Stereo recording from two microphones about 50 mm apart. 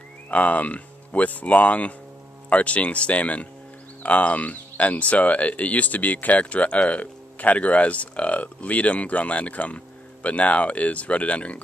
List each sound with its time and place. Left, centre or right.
0.3 s speech: left